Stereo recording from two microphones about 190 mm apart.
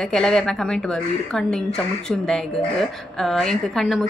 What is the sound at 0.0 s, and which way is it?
A woman's voice, 5° left (ahead or behind).